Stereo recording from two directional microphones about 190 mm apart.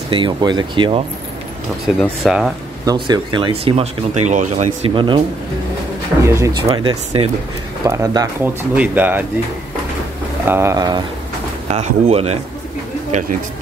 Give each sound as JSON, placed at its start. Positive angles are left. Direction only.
{"t": 0.1, "sound": "speech", "side_deg": -25}
{"t": 2.0, "sound": "speech", "side_deg": 0}
{"t": 2.8, "sound": "speech", "side_deg": -20}
{"t": 4.9, "sound": "speech", "side_deg": -25}
{"t": 6.2, "sound": "speech", "side_deg": -15}
{"t": 8.7, "sound": "speech", "side_deg": -10}
{"t": 10.4, "sound": "speech", "side_deg": -10}
{"t": 11.6, "sound": "speech", "side_deg": -35}